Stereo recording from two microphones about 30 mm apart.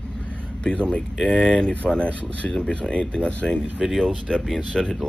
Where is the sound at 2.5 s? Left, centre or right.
Left.